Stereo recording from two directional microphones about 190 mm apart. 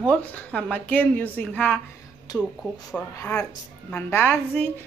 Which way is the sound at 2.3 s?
20° left (ahead or behind).